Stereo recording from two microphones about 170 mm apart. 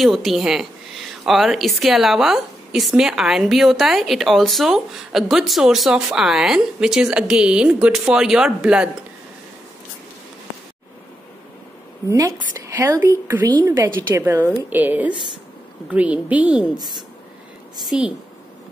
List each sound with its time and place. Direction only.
0.0 s a woman's voice: centre (ahead or behind)
12.1 s a woman's voice: 20° right (ahead or behind)
17.8 s a woman's voice: 5° right (ahead or behind)